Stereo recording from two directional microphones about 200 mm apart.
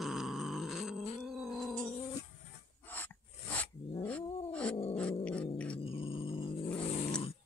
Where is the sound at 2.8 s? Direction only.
10° left (ahead or behind).